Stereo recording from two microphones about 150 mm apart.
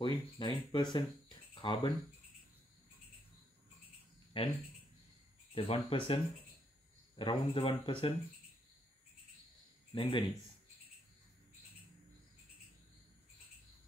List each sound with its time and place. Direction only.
0.0 s speech: 30° left (ahead or behind)
4.3 s speech: 35° left (ahead or behind)
9.9 s speech: 40° left (ahead or behind)